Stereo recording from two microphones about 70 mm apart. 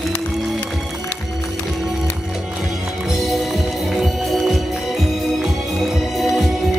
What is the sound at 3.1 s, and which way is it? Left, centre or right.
Music, centre.